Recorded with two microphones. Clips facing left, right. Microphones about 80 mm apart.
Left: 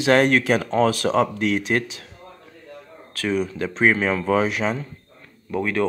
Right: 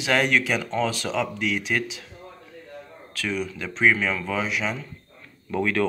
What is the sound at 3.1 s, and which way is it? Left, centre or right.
Speech, left.